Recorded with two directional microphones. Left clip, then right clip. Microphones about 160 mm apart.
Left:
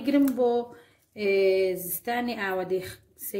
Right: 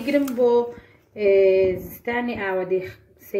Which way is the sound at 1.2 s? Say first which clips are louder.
Right 6 dB; 45° left (ahead or behind).